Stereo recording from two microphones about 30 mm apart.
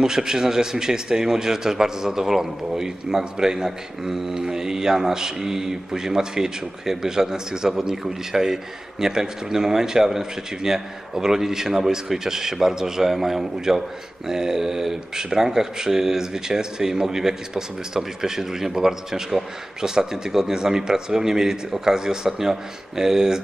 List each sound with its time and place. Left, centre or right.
0.0 s a man's voice: right